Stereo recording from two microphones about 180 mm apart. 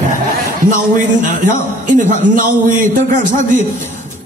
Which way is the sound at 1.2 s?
45° right (ahead or behind).